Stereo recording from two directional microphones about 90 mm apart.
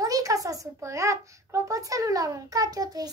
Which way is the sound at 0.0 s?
40° right (ahead or behind).